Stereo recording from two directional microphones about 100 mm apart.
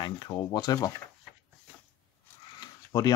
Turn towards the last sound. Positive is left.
turn(degrees=40)  # may be behind; listen again after turning